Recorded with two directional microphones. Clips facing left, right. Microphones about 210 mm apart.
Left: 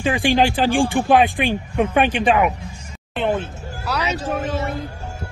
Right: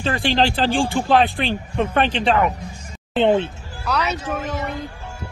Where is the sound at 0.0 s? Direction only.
15° left (ahead or behind).